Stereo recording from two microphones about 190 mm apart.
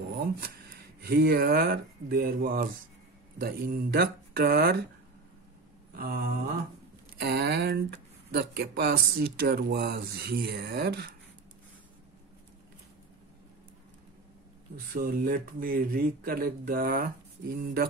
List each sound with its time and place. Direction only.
1.0 s speech: 55° right (ahead or behind)
5.9 s speech: 50° right (ahead or behind)
15.0 s speech: 50° right (ahead or behind)